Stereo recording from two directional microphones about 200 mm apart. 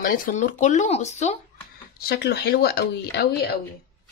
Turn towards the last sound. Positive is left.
turn(degrees=50)  # may be behind; listen again after turning